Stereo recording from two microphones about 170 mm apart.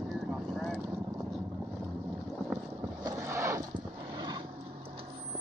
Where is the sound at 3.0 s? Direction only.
15° right (ahead or behind).